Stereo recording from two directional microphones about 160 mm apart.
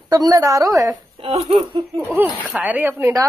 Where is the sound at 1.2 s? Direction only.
35° right (ahead or behind).